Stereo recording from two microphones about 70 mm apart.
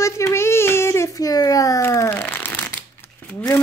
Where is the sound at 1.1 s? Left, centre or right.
Left.